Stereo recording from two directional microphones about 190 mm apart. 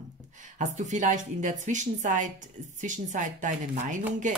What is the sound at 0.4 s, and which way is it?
A woman's voice, 40° right (ahead or behind).